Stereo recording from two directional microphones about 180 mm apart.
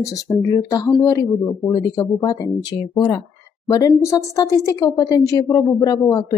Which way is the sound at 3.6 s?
20° left (ahead or behind).